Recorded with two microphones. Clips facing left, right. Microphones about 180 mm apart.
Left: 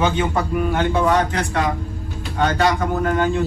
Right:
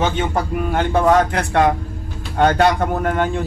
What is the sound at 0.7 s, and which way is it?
A man's voice, 55° right (ahead or behind).